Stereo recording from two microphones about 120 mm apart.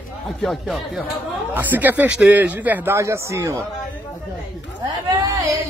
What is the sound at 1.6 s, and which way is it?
A man's voice, 15° right (ahead or behind).